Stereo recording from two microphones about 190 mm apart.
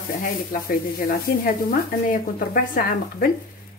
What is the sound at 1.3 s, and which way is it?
Speech, 50° left (ahead or behind).